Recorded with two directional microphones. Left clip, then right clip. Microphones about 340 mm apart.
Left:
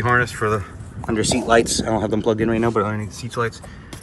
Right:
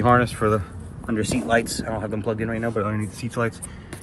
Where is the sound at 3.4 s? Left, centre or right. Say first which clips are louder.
Left 2 dB; centre.